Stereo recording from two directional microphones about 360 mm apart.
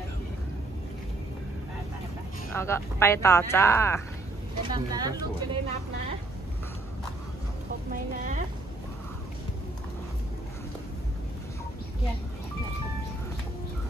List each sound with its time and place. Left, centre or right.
2.5 s speech: centre
4.6 s speech: centre
7.9 s speech: right